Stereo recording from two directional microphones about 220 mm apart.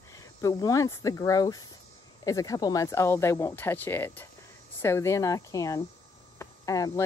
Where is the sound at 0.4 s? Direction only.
15° left (ahead or behind).